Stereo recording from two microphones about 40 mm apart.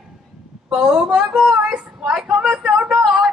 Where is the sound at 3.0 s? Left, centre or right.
Right.